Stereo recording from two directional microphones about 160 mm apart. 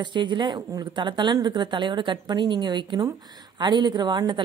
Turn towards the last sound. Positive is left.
turn(degrees=-25)  # may be behind; listen again after turning